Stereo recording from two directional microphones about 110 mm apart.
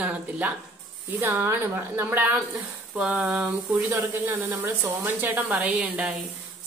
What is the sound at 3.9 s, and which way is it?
Speech, 25° right (ahead or behind).